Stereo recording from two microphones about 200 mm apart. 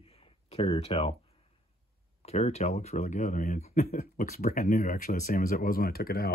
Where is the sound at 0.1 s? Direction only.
30° left (ahead or behind).